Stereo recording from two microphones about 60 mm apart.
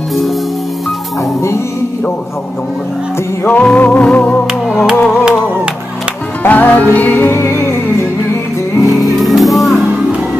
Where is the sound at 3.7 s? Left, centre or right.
Left.